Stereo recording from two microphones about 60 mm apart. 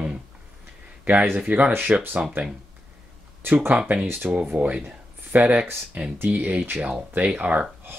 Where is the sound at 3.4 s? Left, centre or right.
Right.